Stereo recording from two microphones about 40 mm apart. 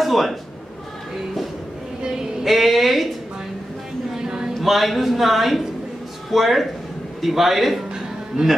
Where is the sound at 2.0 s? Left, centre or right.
Centre.